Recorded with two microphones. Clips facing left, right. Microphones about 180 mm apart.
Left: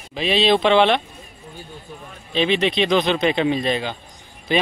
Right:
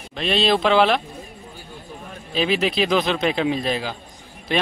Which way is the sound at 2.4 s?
5° right (ahead or behind).